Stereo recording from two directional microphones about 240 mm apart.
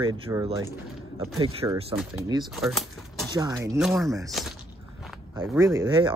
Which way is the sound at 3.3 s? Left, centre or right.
Centre.